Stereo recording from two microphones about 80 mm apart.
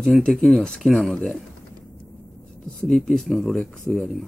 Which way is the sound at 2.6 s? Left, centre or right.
Centre.